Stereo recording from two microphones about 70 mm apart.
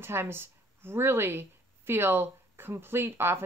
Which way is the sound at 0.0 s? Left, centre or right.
Right.